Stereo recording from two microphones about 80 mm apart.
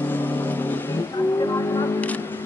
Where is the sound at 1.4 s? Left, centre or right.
Left.